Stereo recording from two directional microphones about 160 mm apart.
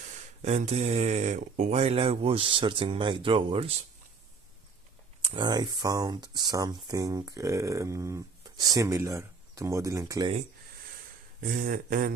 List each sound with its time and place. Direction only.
0.0 s speech: 50° right (ahead or behind)
5.2 s speech: 30° right (ahead or behind)
11.4 s speech: 60° right (ahead or behind)